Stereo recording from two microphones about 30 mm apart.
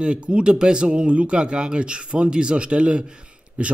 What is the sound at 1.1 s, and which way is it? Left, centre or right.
A man's voice, right.